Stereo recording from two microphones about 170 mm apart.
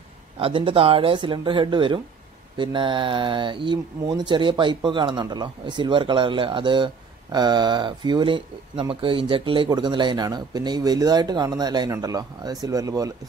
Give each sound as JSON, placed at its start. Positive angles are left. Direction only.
{"t": 0.4, "sound": "speech", "side_deg": -30}